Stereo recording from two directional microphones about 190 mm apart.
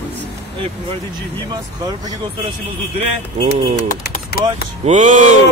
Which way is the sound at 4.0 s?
55° left (ahead or behind).